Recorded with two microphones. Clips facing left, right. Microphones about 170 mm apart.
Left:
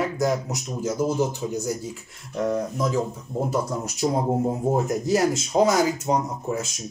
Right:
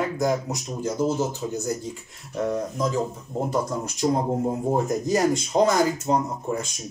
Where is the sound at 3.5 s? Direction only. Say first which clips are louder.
Even; 5° left (ahead or behind).